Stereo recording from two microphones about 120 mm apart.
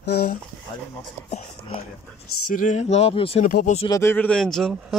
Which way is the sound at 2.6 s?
80° left.